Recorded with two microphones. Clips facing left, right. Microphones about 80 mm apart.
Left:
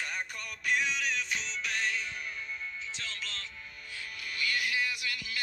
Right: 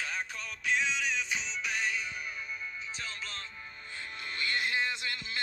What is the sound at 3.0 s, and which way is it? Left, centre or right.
Music, centre.